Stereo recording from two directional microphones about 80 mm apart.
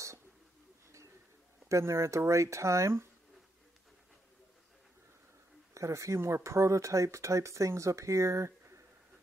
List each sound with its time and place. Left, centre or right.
1.7 s speech: right
5.8 s speech: right